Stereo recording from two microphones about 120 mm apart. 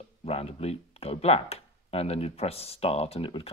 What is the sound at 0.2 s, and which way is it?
Speech, 55° left (ahead or behind).